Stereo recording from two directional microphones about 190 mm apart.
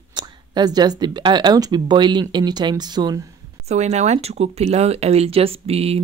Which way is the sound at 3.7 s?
35° right (ahead or behind).